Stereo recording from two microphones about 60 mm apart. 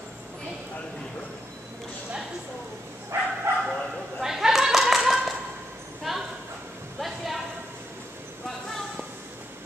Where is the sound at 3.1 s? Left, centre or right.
Right.